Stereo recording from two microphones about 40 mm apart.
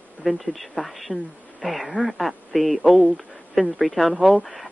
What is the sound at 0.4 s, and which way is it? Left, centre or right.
Speech, centre.